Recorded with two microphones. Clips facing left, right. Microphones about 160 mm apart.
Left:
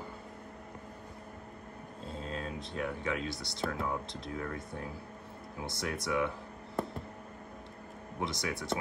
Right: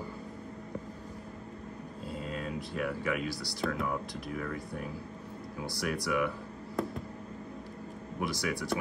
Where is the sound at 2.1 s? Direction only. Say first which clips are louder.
Right 2 dB; 20° left (ahead or behind).